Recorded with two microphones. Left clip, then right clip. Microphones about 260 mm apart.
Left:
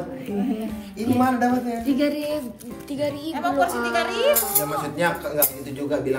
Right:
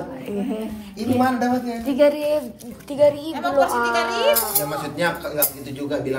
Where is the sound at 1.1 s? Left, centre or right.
Centre.